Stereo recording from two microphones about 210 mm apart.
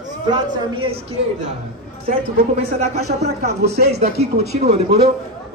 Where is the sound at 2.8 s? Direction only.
30° right (ahead or behind).